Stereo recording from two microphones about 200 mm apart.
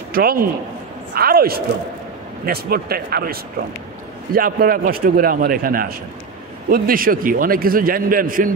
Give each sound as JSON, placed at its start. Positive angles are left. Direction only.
{"t": 0.1, "sound": "a man's voice", "side_deg": -50}